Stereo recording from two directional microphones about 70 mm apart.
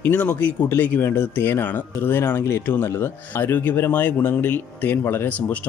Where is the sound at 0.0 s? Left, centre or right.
Left.